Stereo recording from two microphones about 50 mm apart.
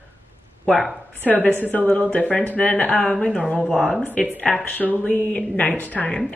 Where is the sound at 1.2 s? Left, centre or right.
Left.